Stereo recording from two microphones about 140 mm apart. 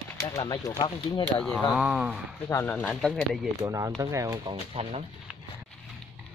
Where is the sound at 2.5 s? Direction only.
15° left (ahead or behind).